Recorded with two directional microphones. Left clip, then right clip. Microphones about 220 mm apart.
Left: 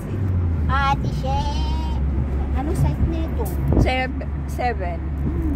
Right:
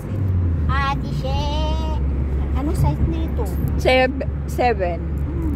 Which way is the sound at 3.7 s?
35° right (ahead or behind).